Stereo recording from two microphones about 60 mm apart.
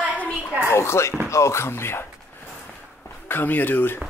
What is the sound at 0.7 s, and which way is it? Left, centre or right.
Speech, left.